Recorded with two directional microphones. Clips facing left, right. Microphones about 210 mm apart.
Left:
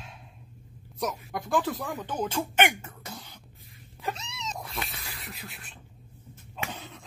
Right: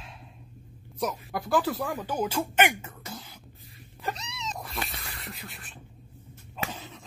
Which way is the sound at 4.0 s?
Centre (ahead or behind).